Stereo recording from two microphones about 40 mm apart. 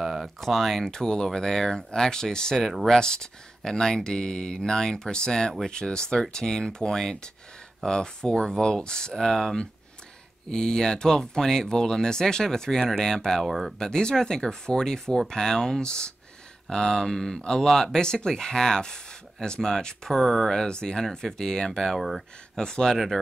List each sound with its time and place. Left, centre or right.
0.0 s a sound: centre
0.4 s speech: centre
13.4 s speech: centre
13.7 s speech: centre
20.6 s speech: centre